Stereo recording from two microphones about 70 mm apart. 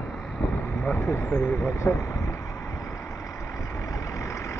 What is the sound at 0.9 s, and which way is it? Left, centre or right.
Speech, left.